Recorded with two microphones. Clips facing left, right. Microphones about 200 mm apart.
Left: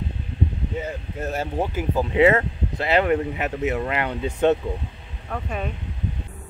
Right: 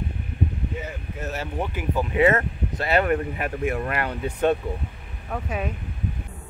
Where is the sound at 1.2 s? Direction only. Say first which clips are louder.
Left 4 dB; 30° left (ahead or behind).